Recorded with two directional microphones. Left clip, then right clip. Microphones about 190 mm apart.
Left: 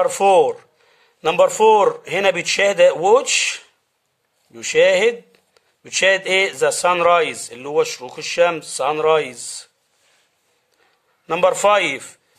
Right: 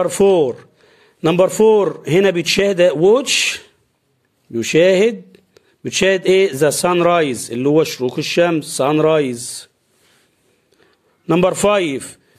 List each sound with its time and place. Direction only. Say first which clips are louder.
0.0 s a man's voice: even; 15° right (ahead or behind)
11.2 s a man's voice: right 1 dB; 15° right (ahead or behind)